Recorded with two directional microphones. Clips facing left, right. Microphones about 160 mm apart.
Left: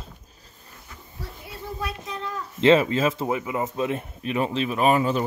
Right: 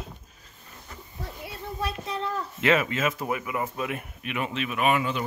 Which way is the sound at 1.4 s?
30° right (ahead or behind).